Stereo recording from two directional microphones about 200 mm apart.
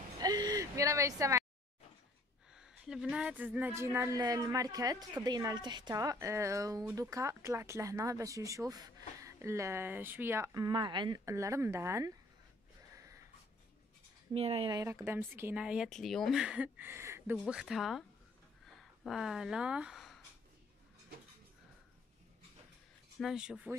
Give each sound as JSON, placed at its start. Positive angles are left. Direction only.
{"t": 0.2, "sound": "a sound", "side_deg": -20}
{"t": 2.5, "sound": "speech", "side_deg": -5}
{"t": 12.9, "sound": "a sound", "side_deg": -15}
{"t": 14.3, "sound": "speech", "side_deg": -30}
{"t": 19.0, "sound": "speech", "side_deg": 0}
{"t": 23.1, "sound": "speech", "side_deg": 0}